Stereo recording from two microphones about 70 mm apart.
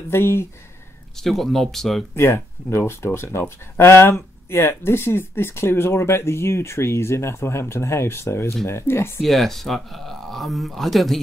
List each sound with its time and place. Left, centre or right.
0.1 s speech: left
1.2 s speech: centre
2.1 s speech: left
9.2 s speech: centre